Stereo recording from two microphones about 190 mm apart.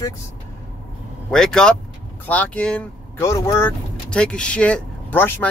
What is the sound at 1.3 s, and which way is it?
Speech, 5° left (ahead or behind).